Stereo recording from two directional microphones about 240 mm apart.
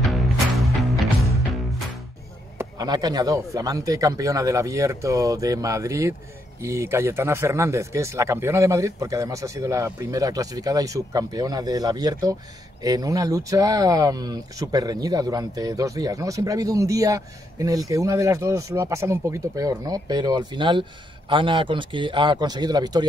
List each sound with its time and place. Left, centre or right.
0.0 s music: centre
2.6 s speech: centre